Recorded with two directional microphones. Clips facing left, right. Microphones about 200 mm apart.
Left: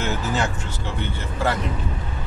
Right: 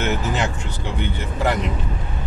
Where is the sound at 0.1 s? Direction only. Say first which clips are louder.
Right 1 dB; 20° right (ahead or behind).